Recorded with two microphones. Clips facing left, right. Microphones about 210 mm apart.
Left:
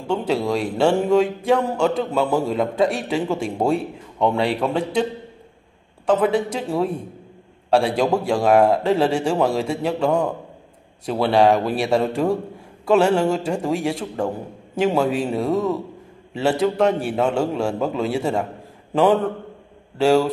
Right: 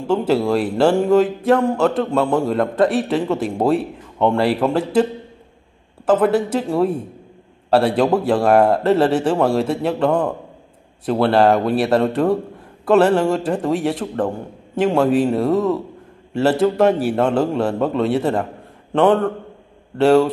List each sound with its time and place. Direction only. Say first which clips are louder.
0.0 s a man's voice: right 4 dB; 5° right (ahead or behind)
6.0 s a man's voice: right 3 dB; 5° right (ahead or behind)